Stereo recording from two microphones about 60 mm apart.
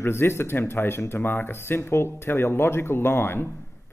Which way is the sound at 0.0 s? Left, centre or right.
Left.